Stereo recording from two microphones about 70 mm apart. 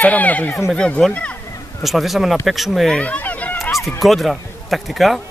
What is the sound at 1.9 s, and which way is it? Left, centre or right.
A man's voice, centre.